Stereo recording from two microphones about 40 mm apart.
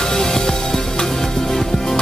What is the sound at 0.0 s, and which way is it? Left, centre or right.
Music, centre.